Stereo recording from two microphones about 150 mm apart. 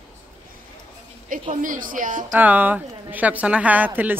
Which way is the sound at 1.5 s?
60° right (ahead or behind).